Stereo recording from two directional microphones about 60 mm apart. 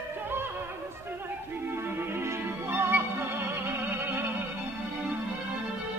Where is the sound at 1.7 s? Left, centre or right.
Right.